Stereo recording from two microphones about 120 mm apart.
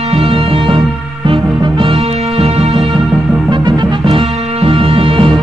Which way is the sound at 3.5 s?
40° right (ahead or behind).